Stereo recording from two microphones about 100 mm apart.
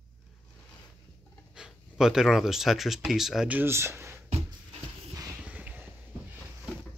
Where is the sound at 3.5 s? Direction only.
25° right (ahead or behind).